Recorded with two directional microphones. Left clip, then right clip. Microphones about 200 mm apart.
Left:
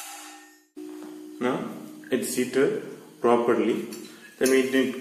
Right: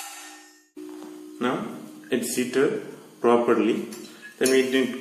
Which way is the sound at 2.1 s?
10° right (ahead or behind).